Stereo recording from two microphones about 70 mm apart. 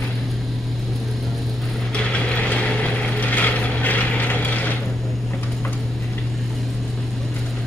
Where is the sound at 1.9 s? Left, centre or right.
Centre.